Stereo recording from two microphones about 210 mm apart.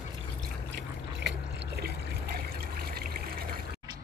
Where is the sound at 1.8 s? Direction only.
45° right (ahead or behind).